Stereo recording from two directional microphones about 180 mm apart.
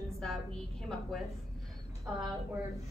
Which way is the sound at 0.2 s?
5° left (ahead or behind).